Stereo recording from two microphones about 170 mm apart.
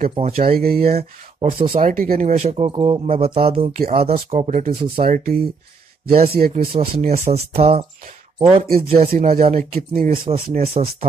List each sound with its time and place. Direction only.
0.1 s speech: 35° right (ahead or behind)
0.6 s speech: 65° right (ahead or behind)
0.8 s speech: 40° right (ahead or behind)
1.9 s speech: 50° right (ahead or behind)
5.0 s speech: 60° right (ahead or behind)
6.4 s speech: 45° right (ahead or behind)
8.6 s speech: 60° right (ahead or behind)
10.2 s speech: 35° right (ahead or behind)